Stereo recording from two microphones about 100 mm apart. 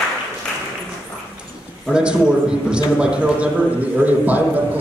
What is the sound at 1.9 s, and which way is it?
A man's voice, 10° right (ahead or behind).